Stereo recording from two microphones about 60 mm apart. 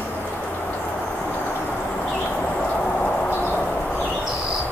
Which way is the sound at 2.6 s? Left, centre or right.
Centre.